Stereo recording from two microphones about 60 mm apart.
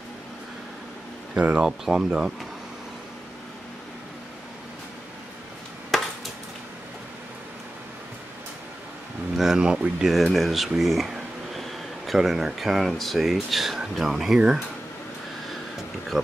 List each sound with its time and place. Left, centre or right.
1.3 s speech: right
1.6 s speech: centre
5.9 s chop: centre
9.4 s speech: centre
10.2 s speech: centre